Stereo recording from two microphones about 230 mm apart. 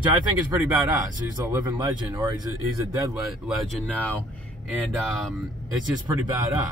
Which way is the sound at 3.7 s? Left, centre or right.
Centre.